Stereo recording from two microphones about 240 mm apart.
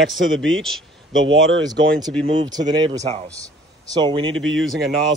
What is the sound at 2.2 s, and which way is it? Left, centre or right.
Speech, centre.